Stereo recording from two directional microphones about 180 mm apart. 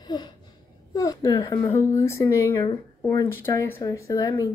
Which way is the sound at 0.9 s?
20° left (ahead or behind).